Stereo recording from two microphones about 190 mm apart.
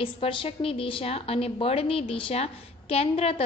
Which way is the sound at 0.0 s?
30° left (ahead or behind).